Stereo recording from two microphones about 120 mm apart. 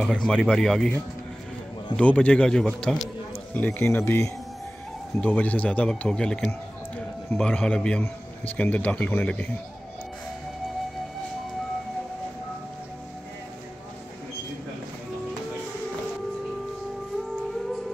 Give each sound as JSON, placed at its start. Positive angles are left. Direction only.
{"t": 0.0, "sound": "speech", "side_deg": 5}
{"t": 2.0, "sound": "speech", "side_deg": 10}
{"t": 3.5, "sound": "speech", "side_deg": 15}
{"t": 17.4, "sound": "music", "side_deg": 0}